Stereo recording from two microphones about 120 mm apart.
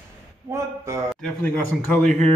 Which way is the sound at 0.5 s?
25° right (ahead or behind).